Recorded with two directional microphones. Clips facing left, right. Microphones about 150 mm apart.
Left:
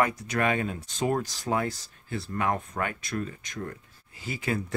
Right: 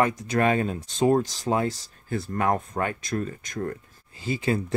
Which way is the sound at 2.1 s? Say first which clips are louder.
Right 4 dB; 45° right (ahead or behind).